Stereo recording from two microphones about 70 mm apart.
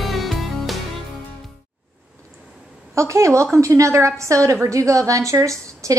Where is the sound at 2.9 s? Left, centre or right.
Right.